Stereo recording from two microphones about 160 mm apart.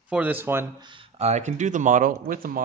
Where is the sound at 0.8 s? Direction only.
30° right (ahead or behind); by 2.6 s 60° right (ahead or behind).